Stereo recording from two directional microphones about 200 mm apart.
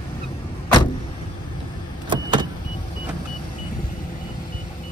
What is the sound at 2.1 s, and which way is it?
Vehicle, 20° right (ahead or behind).